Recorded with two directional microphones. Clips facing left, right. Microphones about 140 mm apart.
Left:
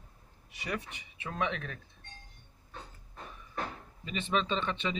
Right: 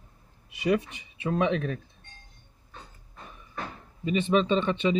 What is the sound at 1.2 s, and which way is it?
Speech, 20° right (ahead or behind).